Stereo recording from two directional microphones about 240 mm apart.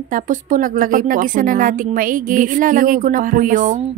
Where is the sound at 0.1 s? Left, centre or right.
Right.